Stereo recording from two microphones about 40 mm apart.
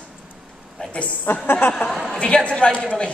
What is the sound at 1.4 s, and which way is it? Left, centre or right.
Speech, left.